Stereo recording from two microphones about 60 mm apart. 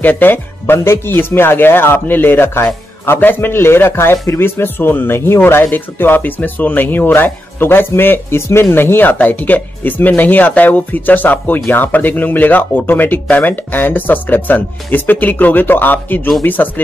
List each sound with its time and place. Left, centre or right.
0.0 s speech: left
8.7 s speech: left